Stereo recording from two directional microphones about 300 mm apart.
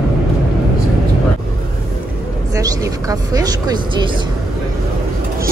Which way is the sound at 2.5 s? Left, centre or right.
Centre.